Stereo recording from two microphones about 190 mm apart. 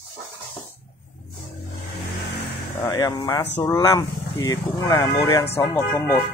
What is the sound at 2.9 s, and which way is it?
Speech, 20° left (ahead or behind).